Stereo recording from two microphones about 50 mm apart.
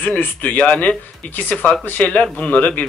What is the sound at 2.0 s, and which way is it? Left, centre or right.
Speech, left.